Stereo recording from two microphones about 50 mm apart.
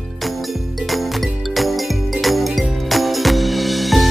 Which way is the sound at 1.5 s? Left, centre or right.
Centre.